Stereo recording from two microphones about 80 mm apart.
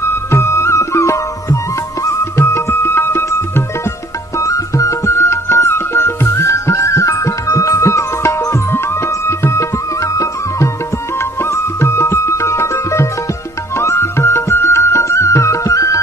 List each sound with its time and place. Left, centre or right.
0.3 s music: left
4.4 s music: left